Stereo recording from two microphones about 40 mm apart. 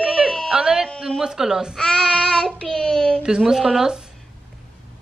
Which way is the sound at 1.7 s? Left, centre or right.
Left.